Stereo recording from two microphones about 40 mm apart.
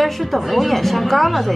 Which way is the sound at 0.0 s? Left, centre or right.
Centre.